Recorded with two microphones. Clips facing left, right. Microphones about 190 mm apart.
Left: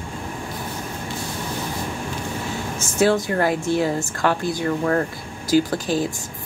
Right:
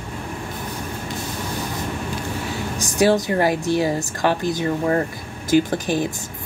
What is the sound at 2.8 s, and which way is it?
A woman's voice, 15° right (ahead or behind).